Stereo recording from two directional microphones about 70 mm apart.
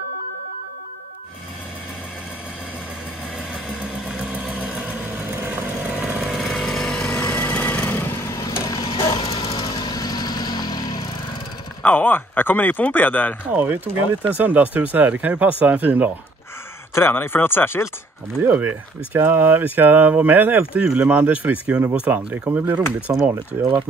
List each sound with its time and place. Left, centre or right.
3.9 s vehicle: centre
5.9 s chainsaw: centre
6.2 s chainsaw: centre
6.5 s vehicle: centre
7.2 s a sound: left
8.3 s a sound: left
8.6 s vehicle: left
11.8 s speech: left
13.5 s speech: right
16.9 s speech: left
18.4 s speech: right